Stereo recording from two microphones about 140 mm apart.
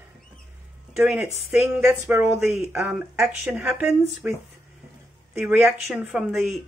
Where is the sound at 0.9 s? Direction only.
10° right (ahead or behind).